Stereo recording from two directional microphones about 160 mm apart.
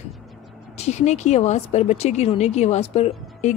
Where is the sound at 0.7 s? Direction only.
45° left (ahead or behind).